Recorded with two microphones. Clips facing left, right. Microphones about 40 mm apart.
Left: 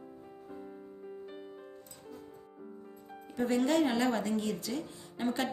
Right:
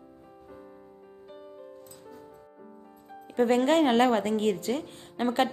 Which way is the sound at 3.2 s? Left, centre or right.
Right.